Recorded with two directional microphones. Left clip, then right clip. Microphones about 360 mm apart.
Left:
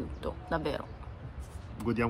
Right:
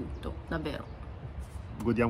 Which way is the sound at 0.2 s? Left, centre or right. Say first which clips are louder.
Left 4 dB; centre.